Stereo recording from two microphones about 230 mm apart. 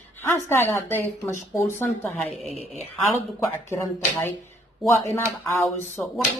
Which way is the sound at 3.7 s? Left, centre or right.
Centre.